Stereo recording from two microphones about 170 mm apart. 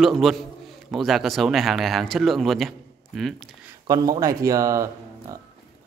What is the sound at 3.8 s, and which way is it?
Speech, 20° right (ahead or behind).